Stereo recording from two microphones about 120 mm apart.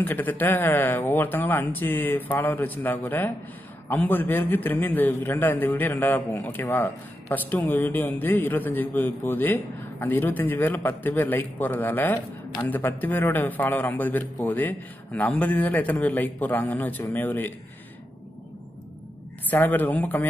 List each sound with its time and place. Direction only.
0.0 s a man's voice: 15° left (ahead or behind)
19.5 s a man's voice: 15° left (ahead or behind)